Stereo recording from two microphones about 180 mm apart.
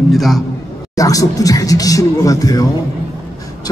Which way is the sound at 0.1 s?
Centre (ahead or behind).